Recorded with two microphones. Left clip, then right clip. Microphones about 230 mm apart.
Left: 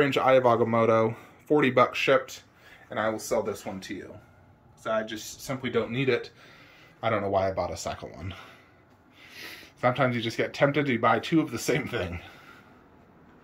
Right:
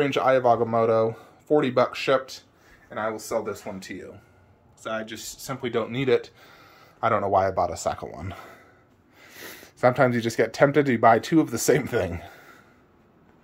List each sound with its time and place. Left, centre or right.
0.0 s speech: centre
3.7 s speech: centre
4.8 s speech: centre